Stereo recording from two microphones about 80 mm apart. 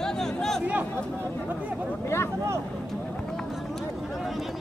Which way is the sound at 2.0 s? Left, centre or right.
Left.